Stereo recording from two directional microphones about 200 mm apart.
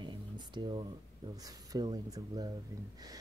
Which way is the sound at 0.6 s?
20° right (ahead or behind).